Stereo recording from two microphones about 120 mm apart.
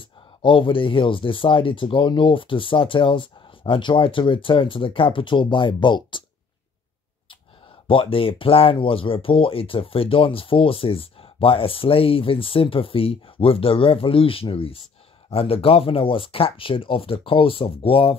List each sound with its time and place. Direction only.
0.4 s speech: 45° left (ahead or behind)
7.9 s speech: 50° left (ahead or behind)